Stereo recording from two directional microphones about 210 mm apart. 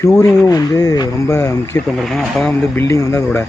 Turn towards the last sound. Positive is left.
turn(degrees=15)  # may be behind; listen again after turning